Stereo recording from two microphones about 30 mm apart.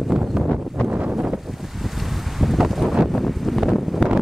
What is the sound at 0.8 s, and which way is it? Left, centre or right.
Wind noise, right.